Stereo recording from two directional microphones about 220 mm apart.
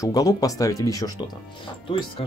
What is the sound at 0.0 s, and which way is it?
Speech, 15° left (ahead or behind).